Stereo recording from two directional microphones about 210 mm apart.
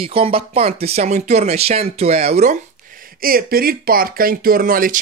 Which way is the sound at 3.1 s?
45° right (ahead or behind).